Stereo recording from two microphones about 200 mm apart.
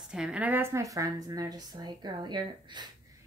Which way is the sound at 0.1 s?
5° right (ahead or behind).